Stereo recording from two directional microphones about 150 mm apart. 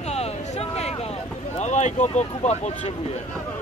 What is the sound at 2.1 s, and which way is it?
Speech, 50° left (ahead or behind).